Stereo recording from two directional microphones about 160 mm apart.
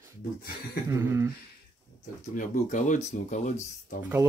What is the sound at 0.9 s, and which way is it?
Speech, 15° right (ahead or behind).